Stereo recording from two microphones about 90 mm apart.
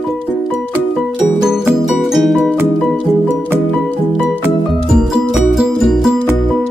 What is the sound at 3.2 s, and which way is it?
Music, 20° left (ahead or behind).